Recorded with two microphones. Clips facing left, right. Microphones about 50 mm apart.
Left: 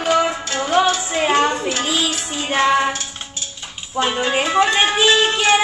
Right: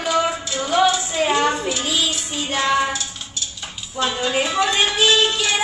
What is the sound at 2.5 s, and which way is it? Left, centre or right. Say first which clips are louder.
Child singing: left 3 dB; left.